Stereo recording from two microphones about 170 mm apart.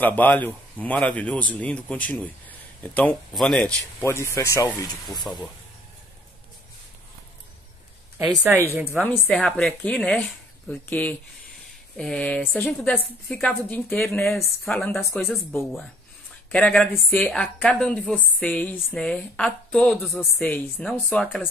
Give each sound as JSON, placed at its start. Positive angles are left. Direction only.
{"t": 0.0, "sound": "speech", "side_deg": 10}
{"t": 3.7, "sound": "speech", "side_deg": 15}
{"t": 5.2, "sound": "a woman's voice", "side_deg": 0}
{"t": 8.5, "sound": "a woman's voice", "side_deg": -15}
{"t": 8.9, "sound": "a woman's voice", "side_deg": 10}
{"t": 16.5, "sound": "a woman's voice", "side_deg": 5}